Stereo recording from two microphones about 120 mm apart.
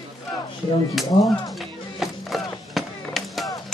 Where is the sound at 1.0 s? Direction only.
Centre (ahead or behind).